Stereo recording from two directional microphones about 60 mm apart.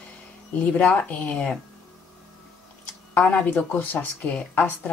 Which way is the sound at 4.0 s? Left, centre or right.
Left.